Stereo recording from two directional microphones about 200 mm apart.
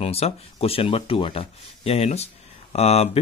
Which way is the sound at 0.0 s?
30° left (ahead or behind).